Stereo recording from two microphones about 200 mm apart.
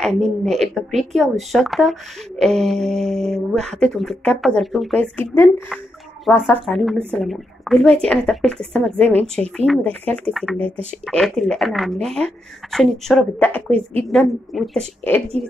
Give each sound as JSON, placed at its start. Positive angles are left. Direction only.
{"t": 0.0, "sound": "a woman's voice", "side_deg": 0}